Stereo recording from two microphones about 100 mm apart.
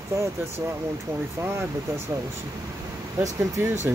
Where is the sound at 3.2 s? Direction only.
30° right (ahead or behind).